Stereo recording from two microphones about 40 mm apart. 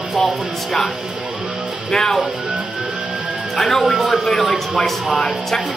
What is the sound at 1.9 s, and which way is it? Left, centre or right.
Speech, centre.